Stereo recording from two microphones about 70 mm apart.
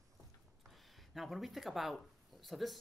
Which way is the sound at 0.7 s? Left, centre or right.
Centre.